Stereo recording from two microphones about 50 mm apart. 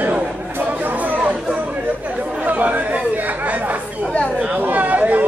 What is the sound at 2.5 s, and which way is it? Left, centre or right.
Chatter, right.